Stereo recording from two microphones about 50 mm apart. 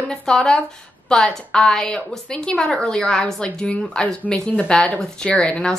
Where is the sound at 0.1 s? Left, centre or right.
Centre.